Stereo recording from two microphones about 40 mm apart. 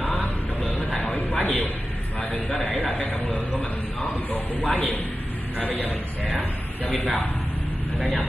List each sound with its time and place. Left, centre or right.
0.0 s a sound: left
1.4 s a man's voice: left
2.9 s speech: left
4.6 s a man's voice: left